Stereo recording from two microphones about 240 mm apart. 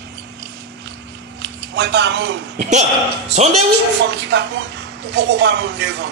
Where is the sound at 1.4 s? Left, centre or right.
Right.